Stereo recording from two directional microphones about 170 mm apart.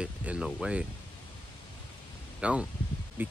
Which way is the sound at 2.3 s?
5° right (ahead or behind).